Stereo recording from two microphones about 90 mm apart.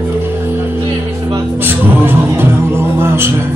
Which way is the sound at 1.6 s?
25° right (ahead or behind).